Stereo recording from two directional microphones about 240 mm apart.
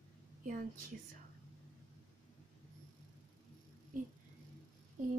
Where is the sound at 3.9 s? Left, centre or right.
Right.